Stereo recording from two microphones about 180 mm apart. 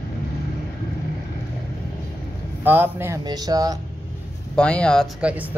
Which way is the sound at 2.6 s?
10° right (ahead or behind).